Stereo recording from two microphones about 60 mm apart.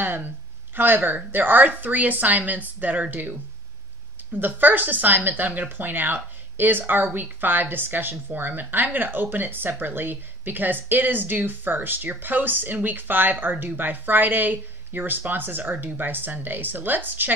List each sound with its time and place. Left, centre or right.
0.0 s a woman's voice: right